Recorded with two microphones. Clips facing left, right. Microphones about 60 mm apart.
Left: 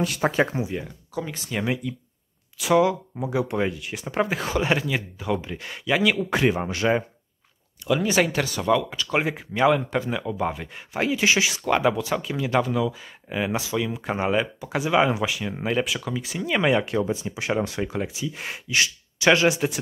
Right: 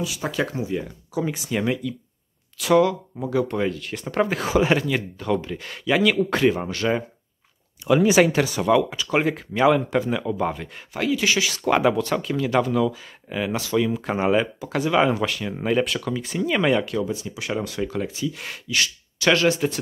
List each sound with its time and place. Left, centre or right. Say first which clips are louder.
0.2 s speech: left 4 dB; left
0.8 s speech: right 5 dB; centre
2.5 s speech: right 2 dB; centre
2.9 s speech: right 1 dB; centre
7.8 s speech: right 5 dB; centre
9.2 s speech: right 2 dB; centre
11.0 s speech: even; left
11.6 s speech: right 5 dB; centre
13.7 s speech: right 7 dB; centre
16.8 s speech: left 1 dB; left